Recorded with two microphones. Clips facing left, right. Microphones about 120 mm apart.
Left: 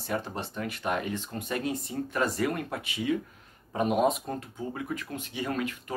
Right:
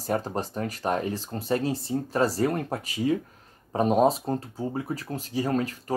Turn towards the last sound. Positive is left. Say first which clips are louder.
# right 5 dB
turn(degrees=-35)  # may be behind; listen again after turning